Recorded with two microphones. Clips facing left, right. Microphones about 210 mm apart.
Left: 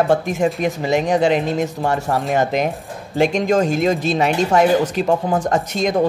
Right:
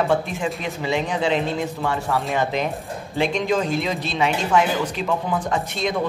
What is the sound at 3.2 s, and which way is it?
Speech, 45° left (ahead or behind).